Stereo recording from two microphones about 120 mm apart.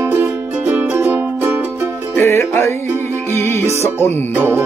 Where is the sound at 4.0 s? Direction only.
20° left (ahead or behind).